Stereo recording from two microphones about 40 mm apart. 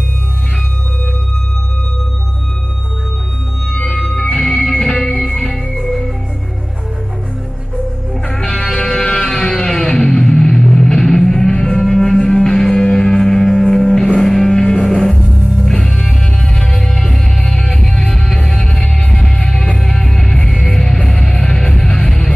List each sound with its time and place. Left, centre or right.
3.7 s organ: centre
4.1 s music: centre
8.3 s music: centre
15.1 s music: centre
15.6 s music: centre